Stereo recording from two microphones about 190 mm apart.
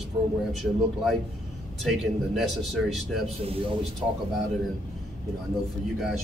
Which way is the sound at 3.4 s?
30° right (ahead or behind).